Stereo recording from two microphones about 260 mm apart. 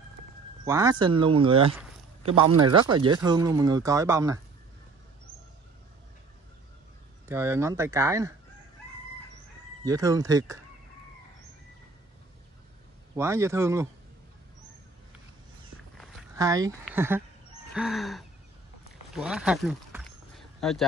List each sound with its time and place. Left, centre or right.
0.7 s speech: centre
7.2 s speech: centre
9.8 s speech: centre
13.1 s speech: centre
16.3 s speech: centre
17.7 s a sound: centre